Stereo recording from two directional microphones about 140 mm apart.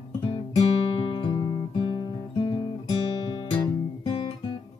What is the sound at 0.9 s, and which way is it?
Guitar, 40° left (ahead or behind).